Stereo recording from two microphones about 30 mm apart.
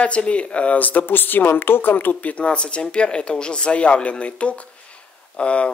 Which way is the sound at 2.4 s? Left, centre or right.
Left.